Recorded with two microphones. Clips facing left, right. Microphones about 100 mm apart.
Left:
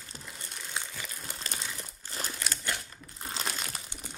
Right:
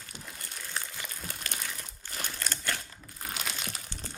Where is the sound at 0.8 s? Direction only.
15° left (ahead or behind).